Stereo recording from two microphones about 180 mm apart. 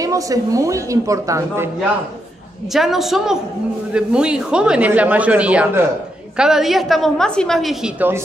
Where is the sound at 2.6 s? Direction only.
Centre (ahead or behind).